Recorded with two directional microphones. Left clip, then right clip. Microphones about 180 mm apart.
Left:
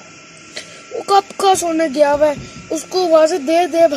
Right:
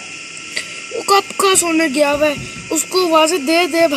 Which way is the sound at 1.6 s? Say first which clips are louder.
Left 1 dB; centre (ahead or behind).